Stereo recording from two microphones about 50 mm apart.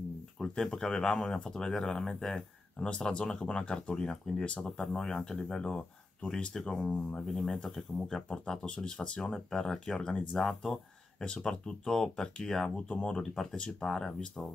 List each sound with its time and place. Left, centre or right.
0.4 s speech: centre
2.9 s speech: centre
10.3 s speech: centre
10.7 s speech: centre
12.8 s speech: left
13.1 s speech: centre